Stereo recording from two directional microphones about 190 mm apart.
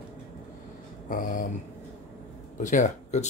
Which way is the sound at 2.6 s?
40° left (ahead or behind).